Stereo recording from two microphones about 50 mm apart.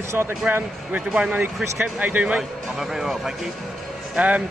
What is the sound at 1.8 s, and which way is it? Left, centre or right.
Speech, right.